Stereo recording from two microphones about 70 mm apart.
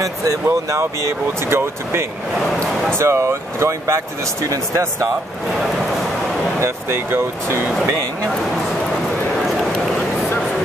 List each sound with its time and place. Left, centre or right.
0.0 s speech: right
6.6 s speech: right